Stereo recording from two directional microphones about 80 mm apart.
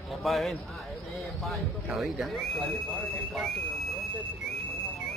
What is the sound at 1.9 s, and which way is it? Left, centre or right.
Speech, centre.